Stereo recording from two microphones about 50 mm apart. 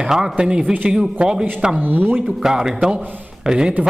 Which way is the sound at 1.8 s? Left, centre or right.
Right.